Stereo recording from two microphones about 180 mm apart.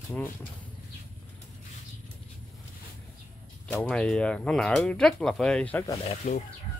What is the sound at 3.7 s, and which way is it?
Speech, 10° left (ahead or behind).